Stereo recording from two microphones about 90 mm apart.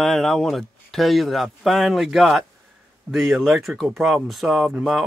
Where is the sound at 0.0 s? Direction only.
5° left (ahead or behind).